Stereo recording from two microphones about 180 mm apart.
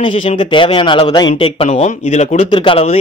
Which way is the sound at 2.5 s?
30° left (ahead or behind).